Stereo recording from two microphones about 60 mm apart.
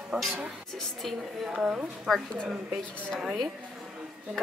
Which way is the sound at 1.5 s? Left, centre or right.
Centre.